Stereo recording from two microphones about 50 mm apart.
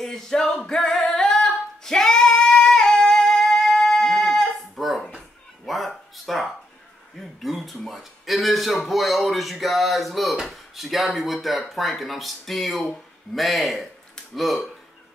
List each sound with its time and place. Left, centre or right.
0.0 s singing: centre
5.7 s a sound: centre
10.5 s speech: centre